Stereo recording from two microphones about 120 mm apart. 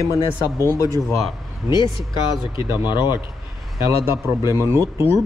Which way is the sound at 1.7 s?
40° left (ahead or behind).